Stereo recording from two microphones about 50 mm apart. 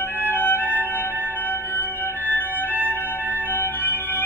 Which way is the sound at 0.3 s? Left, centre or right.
Left.